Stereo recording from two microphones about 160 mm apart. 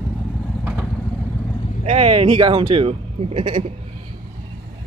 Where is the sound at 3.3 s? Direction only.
50° right (ahead or behind).